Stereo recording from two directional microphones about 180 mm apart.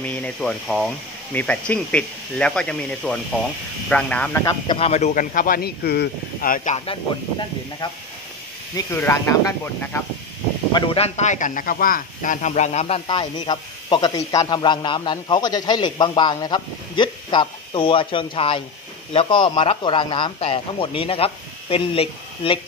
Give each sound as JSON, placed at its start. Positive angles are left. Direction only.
{"t": 0.0, "sound": "speech", "side_deg": 10}
{"t": 4.7, "sound": "speech", "side_deg": 35}
{"t": 8.7, "sound": "speech", "side_deg": 15}
{"t": 10.7, "sound": "a man's voice", "side_deg": 30}